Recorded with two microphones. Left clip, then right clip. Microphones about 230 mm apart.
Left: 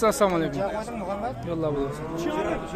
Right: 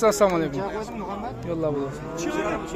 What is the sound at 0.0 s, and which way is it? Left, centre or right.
Speech, centre.